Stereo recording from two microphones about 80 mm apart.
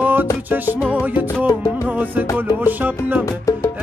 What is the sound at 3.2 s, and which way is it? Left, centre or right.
Music, left.